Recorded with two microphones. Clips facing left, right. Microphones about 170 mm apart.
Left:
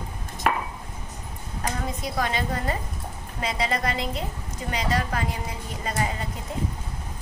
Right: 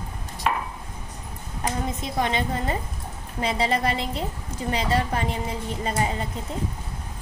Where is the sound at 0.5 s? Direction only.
55° left (ahead or behind).